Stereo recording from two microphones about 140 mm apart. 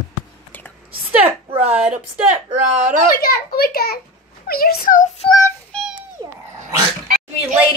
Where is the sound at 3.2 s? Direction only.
90° left.